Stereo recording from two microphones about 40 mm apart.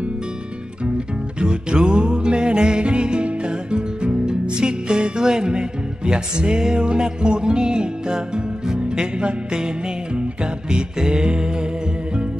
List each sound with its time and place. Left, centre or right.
0.9 s music: right